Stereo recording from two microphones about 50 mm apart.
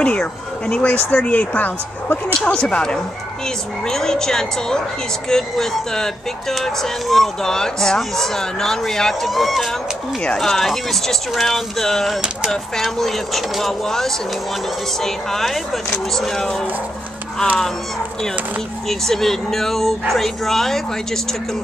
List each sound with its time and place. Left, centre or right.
0.0 s a woman's voice: left
2.5 s speech: centre
18.9 s speech: centre